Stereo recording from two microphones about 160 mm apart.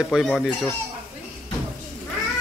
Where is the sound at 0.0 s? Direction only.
Centre (ahead or behind).